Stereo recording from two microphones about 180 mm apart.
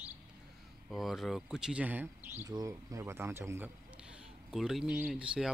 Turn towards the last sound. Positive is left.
turn(degrees=-5)  # may be behind; listen again after turning